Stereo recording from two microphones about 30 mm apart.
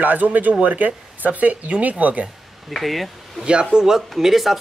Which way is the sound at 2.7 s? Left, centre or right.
Centre.